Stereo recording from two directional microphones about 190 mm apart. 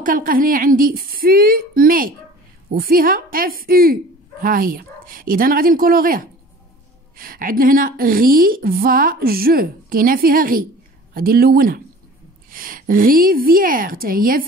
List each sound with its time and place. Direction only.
0.0 s a woman's voice: 45° right (ahead or behind)